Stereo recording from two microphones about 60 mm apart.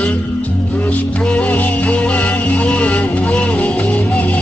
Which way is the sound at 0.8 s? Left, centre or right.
Left.